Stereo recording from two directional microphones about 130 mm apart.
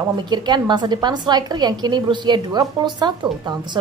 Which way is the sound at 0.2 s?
35° right (ahead or behind).